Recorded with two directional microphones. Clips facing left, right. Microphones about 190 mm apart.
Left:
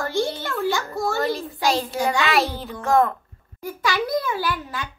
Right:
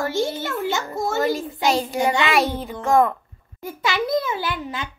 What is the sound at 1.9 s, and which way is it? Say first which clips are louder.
Speech: right 2 dB; 20° right (ahead or behind).